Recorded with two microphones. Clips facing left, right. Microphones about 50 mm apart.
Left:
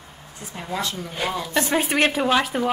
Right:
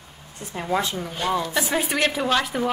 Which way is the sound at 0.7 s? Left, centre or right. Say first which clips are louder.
Right 4 dB; right.